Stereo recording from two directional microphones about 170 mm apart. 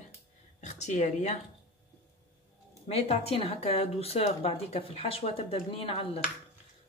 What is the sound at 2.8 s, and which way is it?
Speech, 35° left (ahead or behind).